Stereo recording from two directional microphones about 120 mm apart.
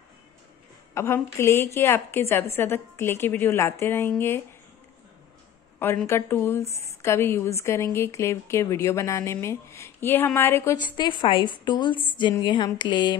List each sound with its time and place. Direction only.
0.9 s a woman's voice: 25° left (ahead or behind)
6.0 s a woman's voice: 20° left (ahead or behind)
11.0 s a sound: 40° left (ahead or behind)